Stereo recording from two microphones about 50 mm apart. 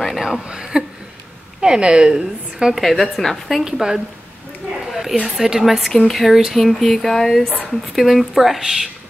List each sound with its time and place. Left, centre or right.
0.0 s a woman's voice: centre
0.5 s a woman's voice: centre
2.7 s a woman's voice: centre
5.2 s a woman's voice: centre